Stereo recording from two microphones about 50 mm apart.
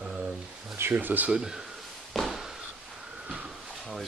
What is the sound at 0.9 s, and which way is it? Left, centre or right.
Speech, right.